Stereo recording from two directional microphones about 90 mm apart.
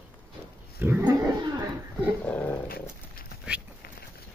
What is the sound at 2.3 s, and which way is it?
Dog, 20° left (ahead or behind).